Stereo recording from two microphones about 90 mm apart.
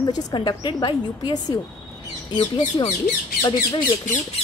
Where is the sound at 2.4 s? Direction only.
60° left (ahead or behind).